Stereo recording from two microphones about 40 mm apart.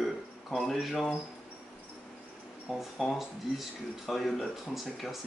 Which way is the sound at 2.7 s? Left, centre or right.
Centre.